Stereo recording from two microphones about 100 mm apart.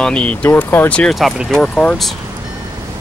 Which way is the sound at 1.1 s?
Centre (ahead or behind).